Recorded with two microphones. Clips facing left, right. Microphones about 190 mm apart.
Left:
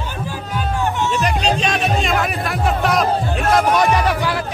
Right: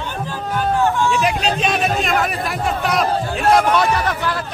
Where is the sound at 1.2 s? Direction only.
Centre (ahead or behind).